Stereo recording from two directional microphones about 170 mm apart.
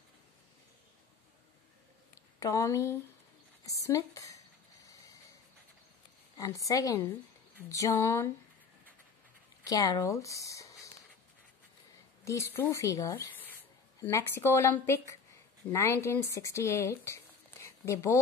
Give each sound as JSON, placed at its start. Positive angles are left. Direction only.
{"t": 2.4, "sound": "a woman's voice", "side_deg": 20}
{"t": 6.3, "sound": "a woman's voice", "side_deg": 20}
{"t": 9.7, "sound": "speech", "side_deg": 20}
{"t": 12.3, "sound": "speech", "side_deg": 15}